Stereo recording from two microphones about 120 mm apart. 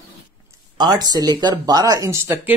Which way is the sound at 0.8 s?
35° right (ahead or behind).